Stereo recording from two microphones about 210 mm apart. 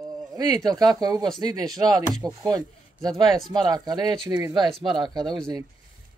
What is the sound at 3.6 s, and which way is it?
Speech, 20° right (ahead or behind).